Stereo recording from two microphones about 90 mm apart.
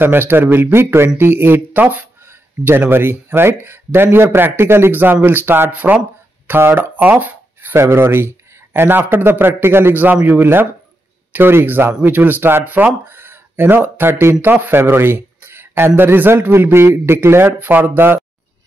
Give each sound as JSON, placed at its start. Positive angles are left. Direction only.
{"t": 0.0, "sound": "speech", "side_deg": -25}